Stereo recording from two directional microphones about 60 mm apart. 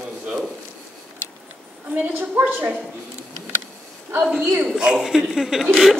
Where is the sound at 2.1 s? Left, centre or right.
Right.